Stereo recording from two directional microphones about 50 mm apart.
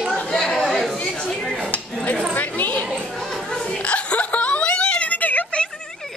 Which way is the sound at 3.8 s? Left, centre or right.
Left.